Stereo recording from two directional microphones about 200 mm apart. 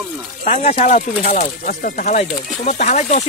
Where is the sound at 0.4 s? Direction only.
35° left (ahead or behind).